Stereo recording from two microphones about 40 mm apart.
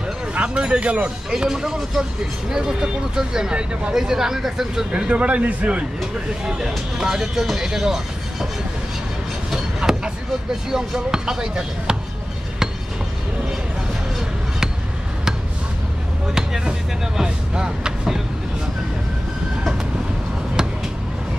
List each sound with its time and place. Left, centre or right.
0.3 s speech: right
1.3 s speech: centre
4.9 s speech: right
6.4 s speech: centre
9.5 s a sound: centre
10.5 s speech: centre
16.3 s speech: centre